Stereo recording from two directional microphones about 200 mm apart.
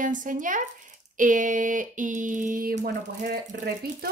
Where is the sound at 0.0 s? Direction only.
40° right (ahead or behind).